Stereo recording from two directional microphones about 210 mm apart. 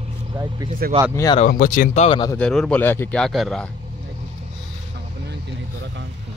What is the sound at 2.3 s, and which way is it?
A man's voice, 5° left (ahead or behind).